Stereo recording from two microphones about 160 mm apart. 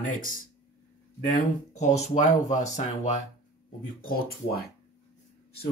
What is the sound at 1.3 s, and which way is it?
Speech, 45° left (ahead or behind).